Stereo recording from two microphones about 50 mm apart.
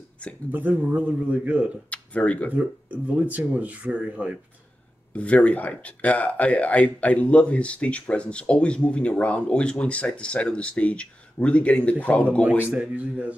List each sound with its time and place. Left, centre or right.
0.5 s a man's voice: right
1.9 s speech: left
2.5 s speech: right
5.1 s speech: left
12.6 s speech: right